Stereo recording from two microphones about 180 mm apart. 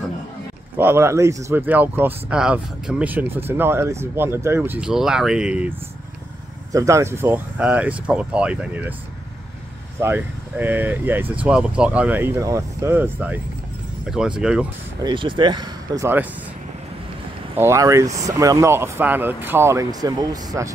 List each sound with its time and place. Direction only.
0.7 s speech: 15° right (ahead or behind)
6.7 s speech: 15° right (ahead or behind)
10.0 s speech: 10° right (ahead or behind)
15.0 s speech: 25° right (ahead or behind)
17.6 s speech: 15° right (ahead or behind)